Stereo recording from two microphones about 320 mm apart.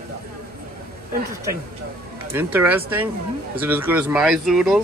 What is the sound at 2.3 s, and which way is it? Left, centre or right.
Speech, centre.